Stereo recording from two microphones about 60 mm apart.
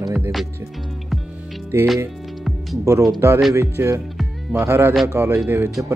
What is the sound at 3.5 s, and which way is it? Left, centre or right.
Speech, right.